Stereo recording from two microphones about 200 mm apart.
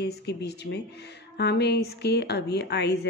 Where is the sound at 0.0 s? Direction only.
55° left (ahead or behind).